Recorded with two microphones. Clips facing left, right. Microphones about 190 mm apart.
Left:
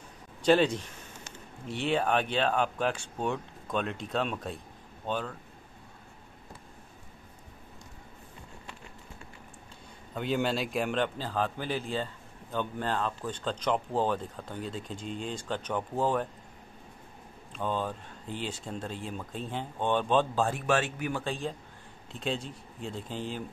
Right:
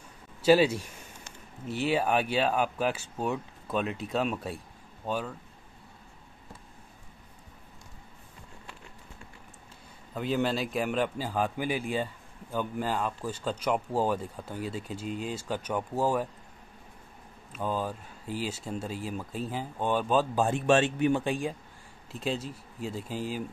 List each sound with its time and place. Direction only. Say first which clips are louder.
0.4 s speech: right 2 dB; 5° right (ahead or behind)
10.1 s speech: right 1 dB; centre (ahead or behind)
17.5 s speech: even; 5° right (ahead or behind)
20.4 s speech: right 4 dB; 25° right (ahead or behind); by 23.4 s 5° right (ahead or behind)